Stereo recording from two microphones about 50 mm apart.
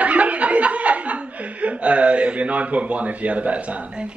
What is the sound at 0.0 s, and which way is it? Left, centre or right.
Chuckle, right.